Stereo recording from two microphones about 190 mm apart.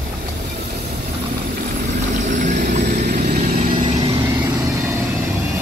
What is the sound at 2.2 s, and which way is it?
Vehicle, 40° right (ahead or behind).